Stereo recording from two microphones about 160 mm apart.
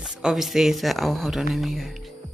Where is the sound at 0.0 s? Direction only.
5° right (ahead or behind).